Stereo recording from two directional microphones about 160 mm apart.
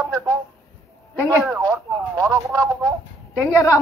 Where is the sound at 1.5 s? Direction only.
20° right (ahead or behind).